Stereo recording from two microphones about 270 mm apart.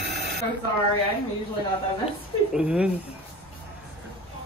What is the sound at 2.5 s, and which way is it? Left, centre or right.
Speech, centre.